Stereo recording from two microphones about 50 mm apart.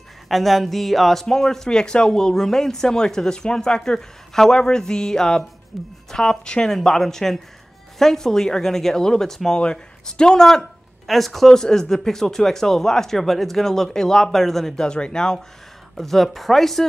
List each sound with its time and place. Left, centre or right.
0.3 s speech: centre
5.7 s speech: centre
6.0 s speech: centre
14.9 s speech: centre
16.0 s speech: centre